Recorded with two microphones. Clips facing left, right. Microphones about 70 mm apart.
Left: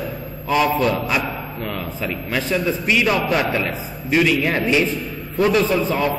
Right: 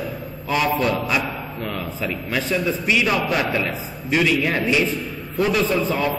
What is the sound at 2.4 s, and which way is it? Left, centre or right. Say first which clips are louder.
Speech: left 1 dB; centre.